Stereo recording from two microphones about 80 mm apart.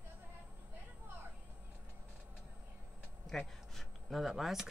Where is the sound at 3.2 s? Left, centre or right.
Centre.